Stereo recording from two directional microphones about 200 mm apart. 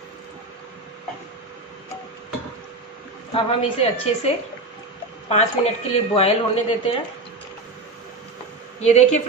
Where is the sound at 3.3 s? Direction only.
30° left (ahead or behind).